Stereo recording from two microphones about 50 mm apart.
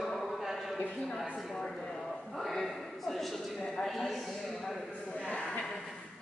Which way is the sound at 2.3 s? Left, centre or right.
Centre.